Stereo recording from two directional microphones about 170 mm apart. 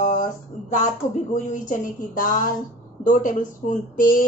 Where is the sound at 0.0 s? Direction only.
50° left (ahead or behind).